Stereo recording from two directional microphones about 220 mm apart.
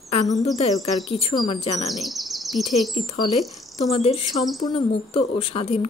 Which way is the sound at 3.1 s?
25° left (ahead or behind).